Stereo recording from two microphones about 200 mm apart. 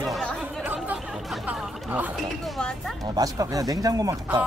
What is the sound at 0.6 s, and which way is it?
Chatter, 10° right (ahead or behind).